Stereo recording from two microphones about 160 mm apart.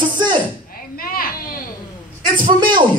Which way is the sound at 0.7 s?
65° left (ahead or behind).